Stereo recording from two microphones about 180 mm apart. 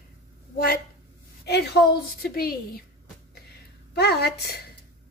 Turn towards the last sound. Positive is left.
turn(degrees=60)  # may be behind; listen again after turning